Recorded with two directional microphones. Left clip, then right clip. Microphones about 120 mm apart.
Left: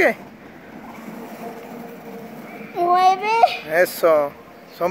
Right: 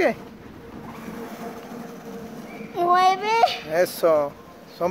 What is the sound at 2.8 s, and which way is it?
Speech, centre (ahead or behind).